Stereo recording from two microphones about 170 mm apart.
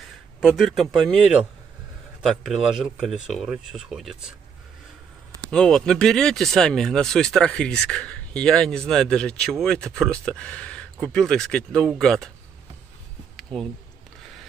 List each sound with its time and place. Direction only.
0.4 s speech: centre (ahead or behind)
5.5 s speech: 5° left (ahead or behind)
13.4 s a sound: centre (ahead or behind)